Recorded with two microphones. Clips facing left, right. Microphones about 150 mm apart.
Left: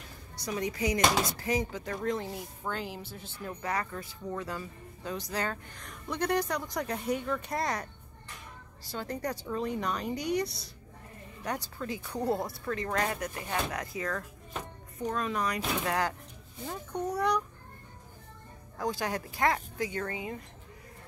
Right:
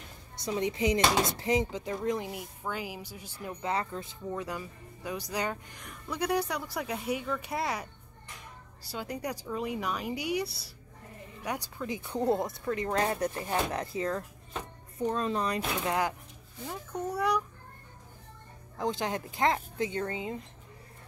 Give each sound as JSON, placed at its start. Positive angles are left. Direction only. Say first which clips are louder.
{"t": 0.4, "sound": "speech", "louder": "right 2 dB", "side_deg": -25}
{"t": 3.6, "sound": "speech", "louder": "right 2 dB", "side_deg": -20}
{"t": 8.9, "sound": "speech", "louder": "left 1 dB", "side_deg": -10}
{"t": 16.6, "sound": "a child's voice", "louder": "left 1 dB", "side_deg": -5}
{"t": 18.8, "sound": "speech", "louder": "right 1 dB", "side_deg": -20}